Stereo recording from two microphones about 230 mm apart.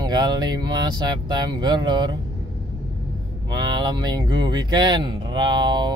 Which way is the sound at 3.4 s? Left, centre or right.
Centre.